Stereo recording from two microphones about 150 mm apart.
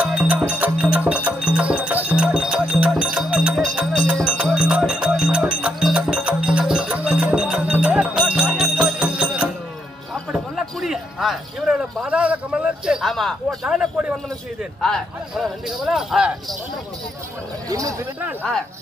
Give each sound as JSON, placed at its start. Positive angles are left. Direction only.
{"t": 0.0, "sound": "music", "side_deg": -5}
{"t": 10.3, "sound": "a sound", "side_deg": -5}
{"t": 13.7, "sound": "a man's voice", "side_deg": -5}
{"t": 17.6, "sound": "speech", "side_deg": -20}